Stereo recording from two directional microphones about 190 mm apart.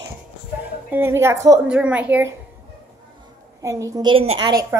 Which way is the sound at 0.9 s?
10° right (ahead or behind).